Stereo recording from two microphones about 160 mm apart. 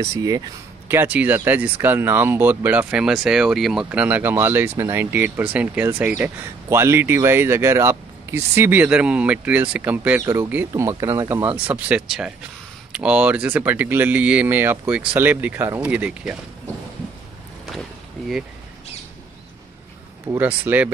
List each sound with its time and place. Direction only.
0.0 s speech: 20° right (ahead or behind)
20.2 s speech: 10° right (ahead or behind)